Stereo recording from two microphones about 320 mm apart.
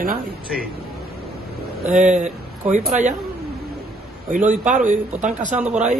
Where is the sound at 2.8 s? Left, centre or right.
Centre.